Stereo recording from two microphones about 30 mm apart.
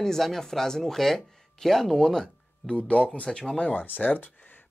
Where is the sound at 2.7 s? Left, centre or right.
Left.